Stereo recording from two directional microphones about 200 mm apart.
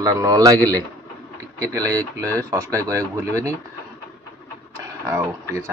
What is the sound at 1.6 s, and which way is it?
Speech, 15° right (ahead or behind).